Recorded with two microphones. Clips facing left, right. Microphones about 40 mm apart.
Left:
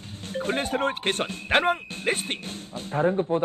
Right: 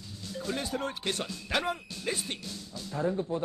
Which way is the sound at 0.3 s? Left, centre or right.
Left.